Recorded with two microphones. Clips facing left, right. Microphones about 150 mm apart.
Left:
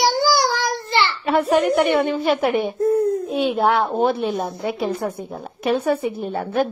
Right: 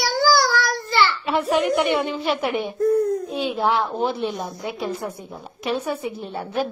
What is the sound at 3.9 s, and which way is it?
Speech, 50° left (ahead or behind).